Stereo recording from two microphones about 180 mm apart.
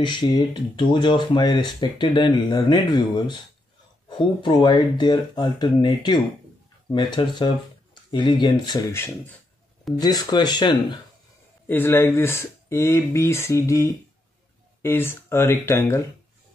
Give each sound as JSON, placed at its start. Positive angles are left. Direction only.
{"t": 0.0, "sound": "speech", "side_deg": 25}
{"t": 11.6, "sound": "speech", "side_deg": 10}